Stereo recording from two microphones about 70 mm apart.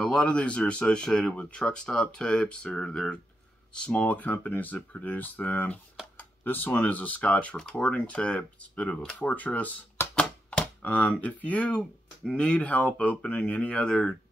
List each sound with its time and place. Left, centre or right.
0.0 s speech: centre
6.1 s computer keyboard: left
6.9 s speech: left